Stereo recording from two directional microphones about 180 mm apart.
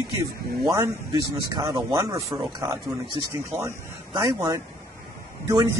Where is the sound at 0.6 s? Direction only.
15° right (ahead or behind).